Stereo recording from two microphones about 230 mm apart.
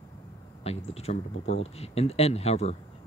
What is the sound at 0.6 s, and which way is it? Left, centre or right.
Speech, left.